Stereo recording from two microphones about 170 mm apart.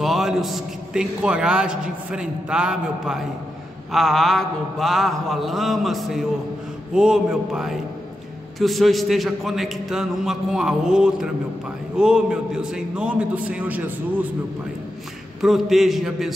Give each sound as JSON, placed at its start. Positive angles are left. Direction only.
{"t": 0.0, "sound": "a man's voice", "side_deg": 0}
{"t": 15.4, "sound": "a man's voice", "side_deg": 0}